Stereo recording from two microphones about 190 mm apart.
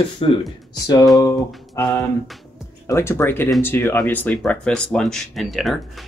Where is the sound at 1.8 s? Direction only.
15° left (ahead or behind).